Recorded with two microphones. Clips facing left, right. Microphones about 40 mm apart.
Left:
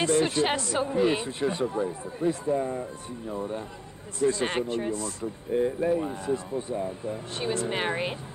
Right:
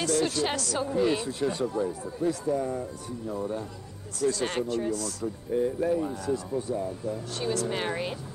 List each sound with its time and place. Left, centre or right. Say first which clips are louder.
0.0 s speech: left 3 dB; left